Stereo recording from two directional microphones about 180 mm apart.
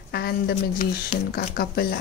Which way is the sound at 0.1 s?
60° left (ahead or behind).